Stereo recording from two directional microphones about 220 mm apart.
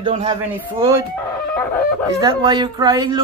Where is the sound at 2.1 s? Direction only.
15° right (ahead or behind).